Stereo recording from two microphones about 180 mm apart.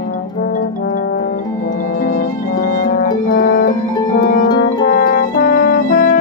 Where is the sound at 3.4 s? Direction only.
50° left (ahead or behind).